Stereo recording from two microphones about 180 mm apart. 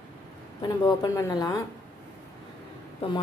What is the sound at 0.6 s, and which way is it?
Speech, 20° left (ahead or behind).